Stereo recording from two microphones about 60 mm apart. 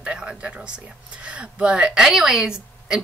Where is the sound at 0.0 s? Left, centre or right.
Centre.